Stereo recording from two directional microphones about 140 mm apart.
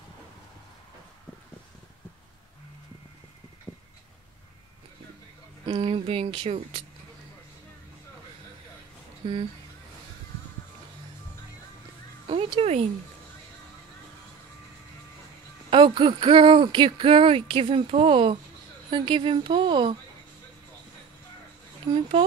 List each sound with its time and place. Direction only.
3.7 s a sound: 15° left (ahead or behind)
5.7 s speech: 40° right (ahead or behind)
9.2 s speech: 35° right (ahead or behind)
12.3 s a sound: 45° right (ahead or behind)
15.7 s speech: 35° right (ahead or behind)
21.8 s speech: 30° right (ahead or behind)